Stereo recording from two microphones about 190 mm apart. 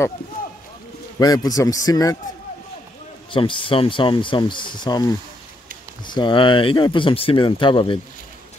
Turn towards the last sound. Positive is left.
turn(degrees=25)  # may be behind; listen again after turning